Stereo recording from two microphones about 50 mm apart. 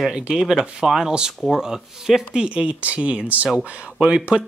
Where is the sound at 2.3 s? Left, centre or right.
Right.